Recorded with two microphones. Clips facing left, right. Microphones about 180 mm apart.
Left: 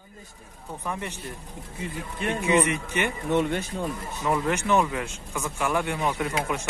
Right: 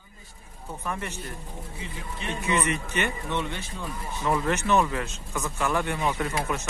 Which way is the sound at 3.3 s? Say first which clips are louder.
Left 7 dB; 45° left (ahead or behind).